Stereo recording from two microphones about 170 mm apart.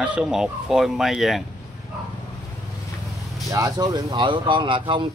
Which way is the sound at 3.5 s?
20° right (ahead or behind).